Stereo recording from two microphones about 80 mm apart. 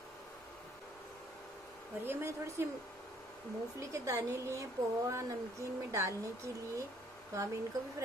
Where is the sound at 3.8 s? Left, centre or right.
Right.